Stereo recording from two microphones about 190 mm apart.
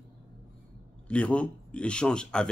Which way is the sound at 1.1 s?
5° left (ahead or behind).